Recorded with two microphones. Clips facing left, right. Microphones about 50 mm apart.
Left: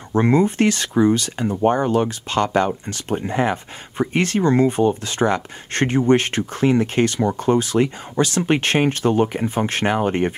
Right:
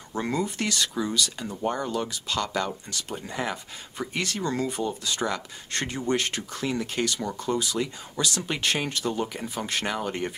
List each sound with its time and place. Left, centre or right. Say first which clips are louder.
0.1 s speech: left 11 dB; left